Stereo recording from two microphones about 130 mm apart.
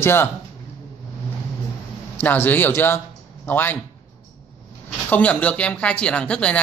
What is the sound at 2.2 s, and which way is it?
Speech, 15° left (ahead or behind).